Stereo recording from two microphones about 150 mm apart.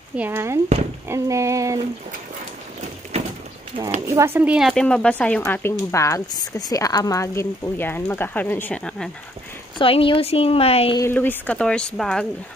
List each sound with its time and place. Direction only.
0.1 s speech: 15° right (ahead or behind)
1.0 s a sound: 20° right (ahead or behind)
3.1 s bird: 45° right (ahead or behind)
4.0 s speech: 20° right (ahead or behind); by 9.1 s 5° left (ahead or behind)
9.8 s speech: 35° left (ahead or behind)
11.0 s speech: 15° left (ahead or behind)